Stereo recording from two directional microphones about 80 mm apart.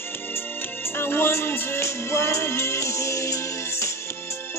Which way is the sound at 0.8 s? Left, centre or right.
Left.